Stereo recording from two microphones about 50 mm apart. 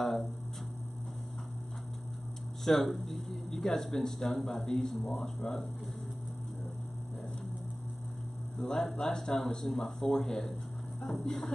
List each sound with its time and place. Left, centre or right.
2.6 s speech: centre
8.5 s speech: centre